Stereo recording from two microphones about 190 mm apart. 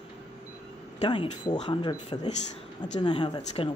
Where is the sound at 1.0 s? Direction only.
25° left (ahead or behind).